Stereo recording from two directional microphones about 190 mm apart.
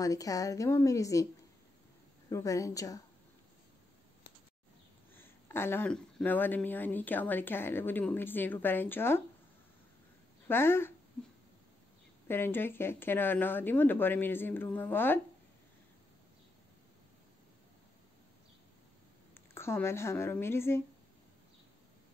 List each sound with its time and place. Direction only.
0.0 s speech: 20° left (ahead or behind)
2.2 s speech: 15° left (ahead or behind)
5.1 s speech: 10° left (ahead or behind)
10.5 s speech: 10° left (ahead or behind)
12.3 s speech: 10° left (ahead or behind)
19.3 s speech: 15° left (ahead or behind)